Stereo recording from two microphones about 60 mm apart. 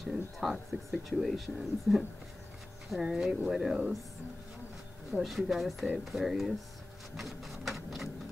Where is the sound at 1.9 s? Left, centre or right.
Centre.